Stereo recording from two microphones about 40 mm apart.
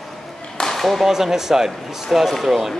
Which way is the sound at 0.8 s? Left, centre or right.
Centre.